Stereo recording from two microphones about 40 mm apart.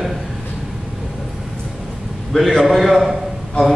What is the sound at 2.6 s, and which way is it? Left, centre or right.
Speech, centre.